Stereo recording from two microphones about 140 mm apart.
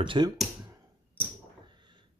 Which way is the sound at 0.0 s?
35° right (ahead or behind).